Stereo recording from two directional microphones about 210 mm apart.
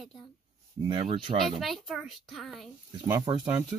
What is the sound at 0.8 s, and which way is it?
Speech, 25° right (ahead or behind).